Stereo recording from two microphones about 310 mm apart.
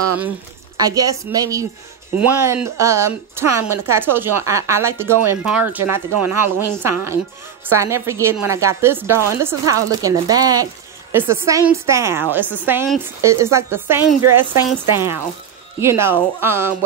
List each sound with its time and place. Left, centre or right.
0.7 s speech: centre
14.2 s speech: right
14.9 s speech: centre